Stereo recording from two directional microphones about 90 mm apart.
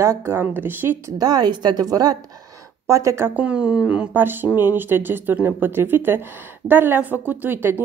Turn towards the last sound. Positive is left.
turn(degrees=-20)  # may be behind; listen again after turning